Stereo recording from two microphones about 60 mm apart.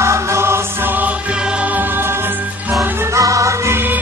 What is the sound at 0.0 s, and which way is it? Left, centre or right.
Music, right.